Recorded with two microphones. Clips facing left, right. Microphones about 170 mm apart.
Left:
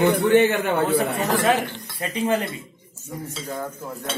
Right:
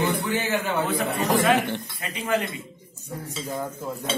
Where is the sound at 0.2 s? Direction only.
65° left (ahead or behind).